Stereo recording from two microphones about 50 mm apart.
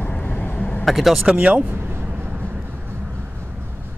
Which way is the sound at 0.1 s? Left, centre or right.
Centre.